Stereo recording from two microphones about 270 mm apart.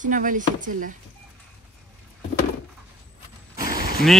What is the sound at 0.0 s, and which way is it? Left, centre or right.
Speech, right.